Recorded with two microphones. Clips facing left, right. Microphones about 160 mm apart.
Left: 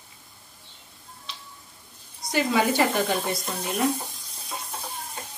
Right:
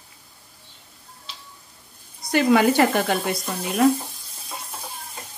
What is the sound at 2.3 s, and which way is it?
Speech, 60° right (ahead or behind).